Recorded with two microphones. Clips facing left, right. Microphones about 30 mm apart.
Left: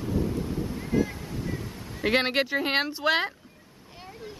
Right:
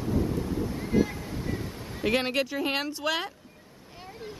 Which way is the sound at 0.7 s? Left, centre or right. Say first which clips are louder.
Right 1 dB; centre.